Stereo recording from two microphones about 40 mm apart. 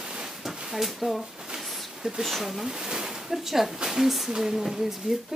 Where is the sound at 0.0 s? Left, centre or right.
Centre.